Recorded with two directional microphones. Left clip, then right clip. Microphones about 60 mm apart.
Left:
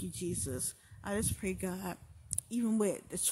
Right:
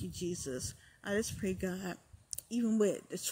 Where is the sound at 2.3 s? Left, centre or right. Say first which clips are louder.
Right 1 dB; left.